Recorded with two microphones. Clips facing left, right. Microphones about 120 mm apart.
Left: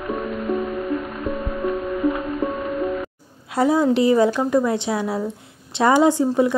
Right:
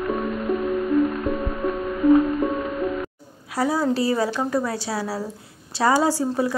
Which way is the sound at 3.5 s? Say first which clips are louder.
Left 4 dB; 20° left (ahead or behind).